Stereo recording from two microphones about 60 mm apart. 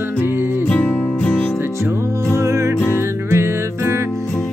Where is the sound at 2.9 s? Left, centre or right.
Right.